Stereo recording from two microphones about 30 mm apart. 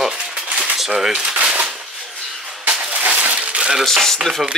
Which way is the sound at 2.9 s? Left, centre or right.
Right.